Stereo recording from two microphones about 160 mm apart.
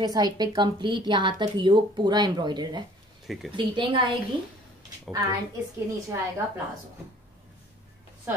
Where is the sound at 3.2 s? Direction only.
Centre (ahead or behind).